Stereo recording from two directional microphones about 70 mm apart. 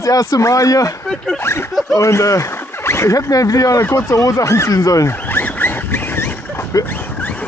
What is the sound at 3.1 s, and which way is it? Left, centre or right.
Speech, left.